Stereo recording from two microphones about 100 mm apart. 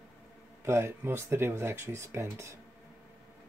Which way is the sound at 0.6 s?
25° right (ahead or behind).